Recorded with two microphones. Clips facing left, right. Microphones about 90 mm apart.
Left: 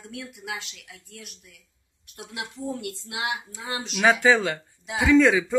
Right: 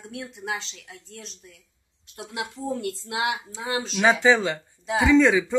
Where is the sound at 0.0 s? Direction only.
25° right (ahead or behind).